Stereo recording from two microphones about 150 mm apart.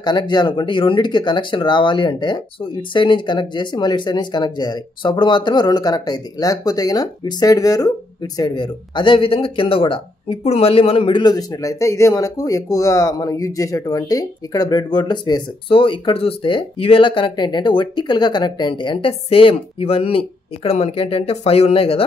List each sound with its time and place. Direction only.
0.0 s speech: 30° left (ahead or behind)